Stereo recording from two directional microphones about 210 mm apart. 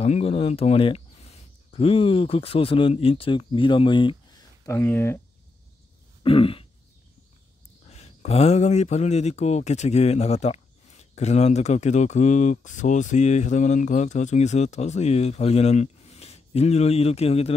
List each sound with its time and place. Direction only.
0.0 s speech: 30° left (ahead or behind)
4.6 s speech: 10° left (ahead or behind)
6.2 s throat clearing: 25° left (ahead or behind)
7.9 s speech: 30° left (ahead or behind)